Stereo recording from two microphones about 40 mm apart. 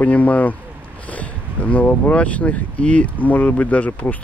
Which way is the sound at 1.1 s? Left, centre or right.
Left.